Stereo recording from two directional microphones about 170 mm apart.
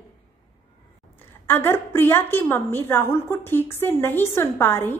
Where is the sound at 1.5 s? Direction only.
15° left (ahead or behind).